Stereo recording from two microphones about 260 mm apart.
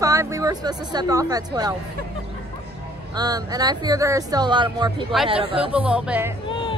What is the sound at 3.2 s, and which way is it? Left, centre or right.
Speech, centre.